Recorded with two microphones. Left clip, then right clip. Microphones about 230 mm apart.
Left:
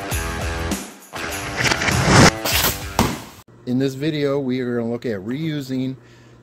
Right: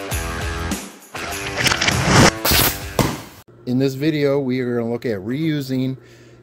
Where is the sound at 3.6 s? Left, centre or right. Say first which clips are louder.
Right 2 dB; centre.